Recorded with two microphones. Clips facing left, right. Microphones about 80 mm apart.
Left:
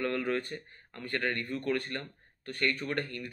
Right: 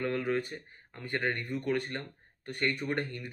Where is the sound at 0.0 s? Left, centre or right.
Centre.